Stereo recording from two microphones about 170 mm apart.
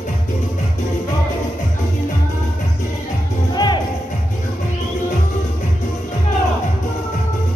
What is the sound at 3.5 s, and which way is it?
Music, 25° left (ahead or behind).